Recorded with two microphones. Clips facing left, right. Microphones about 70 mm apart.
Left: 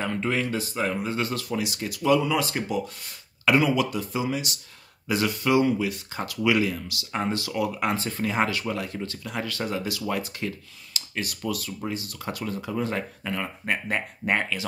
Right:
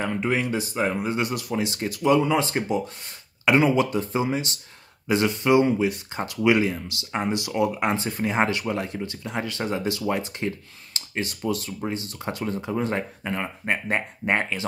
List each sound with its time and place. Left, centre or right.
0.0 s speech: centre
1.6 s speech: right